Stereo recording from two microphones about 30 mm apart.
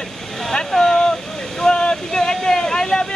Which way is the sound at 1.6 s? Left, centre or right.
Left.